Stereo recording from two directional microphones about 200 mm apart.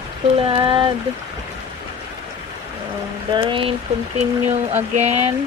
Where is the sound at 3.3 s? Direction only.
25° right (ahead or behind).